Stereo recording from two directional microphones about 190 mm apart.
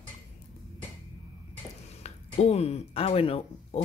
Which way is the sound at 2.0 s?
35° left (ahead or behind).